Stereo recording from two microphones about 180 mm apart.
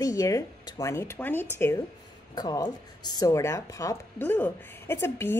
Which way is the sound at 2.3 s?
20° left (ahead or behind).